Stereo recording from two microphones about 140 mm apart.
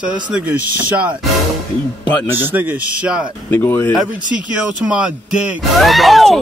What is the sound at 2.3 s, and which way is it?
Speech, 15° right (ahead or behind).